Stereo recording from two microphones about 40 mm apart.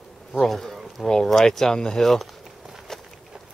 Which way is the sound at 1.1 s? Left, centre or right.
Centre.